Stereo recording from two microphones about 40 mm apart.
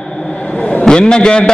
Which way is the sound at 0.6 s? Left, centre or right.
Left.